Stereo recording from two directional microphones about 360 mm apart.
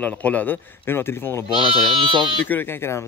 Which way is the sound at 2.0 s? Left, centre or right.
Centre.